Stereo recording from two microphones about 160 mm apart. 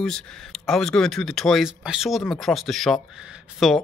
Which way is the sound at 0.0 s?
5° left (ahead or behind).